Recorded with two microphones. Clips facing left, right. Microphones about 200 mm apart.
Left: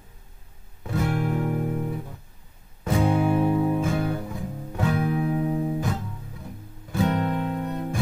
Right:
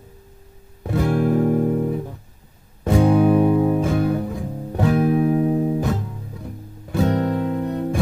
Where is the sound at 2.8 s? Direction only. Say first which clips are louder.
Right 7 dB; 30° right (ahead or behind).